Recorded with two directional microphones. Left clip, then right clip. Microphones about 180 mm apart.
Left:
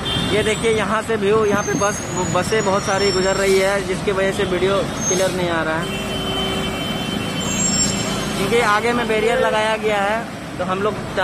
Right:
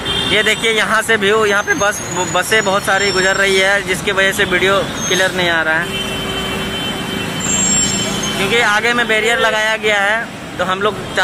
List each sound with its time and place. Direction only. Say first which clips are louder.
0.4 s speech: right 4 dB; 5° left (ahead or behind)
8.5 s speech: right 3 dB; 10° left (ahead or behind)